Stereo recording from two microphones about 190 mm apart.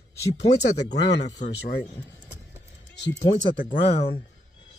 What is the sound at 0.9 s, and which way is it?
Speech, 65° left (ahead or behind).